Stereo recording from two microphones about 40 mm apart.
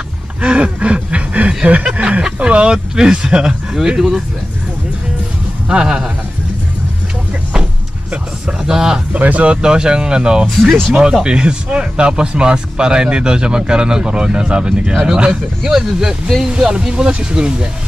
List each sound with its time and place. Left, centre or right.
0.4 s a sound: right
3.2 s speech: right
5.7 s speech: centre
8.6 s speech: centre
9.1 s speech: right
9.6 s speech: centre
10.6 s speech: centre
11.2 s speech: right
15.6 s speech: centre
16.5 s speech: right